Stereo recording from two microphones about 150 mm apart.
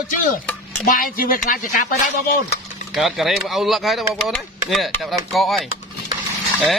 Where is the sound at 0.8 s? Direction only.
70° left (ahead or behind).